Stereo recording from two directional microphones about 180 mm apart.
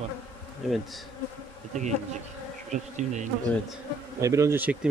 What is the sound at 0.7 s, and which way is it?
Speech, centre (ahead or behind).